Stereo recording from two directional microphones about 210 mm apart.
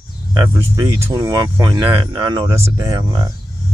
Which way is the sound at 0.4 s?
15° right (ahead or behind).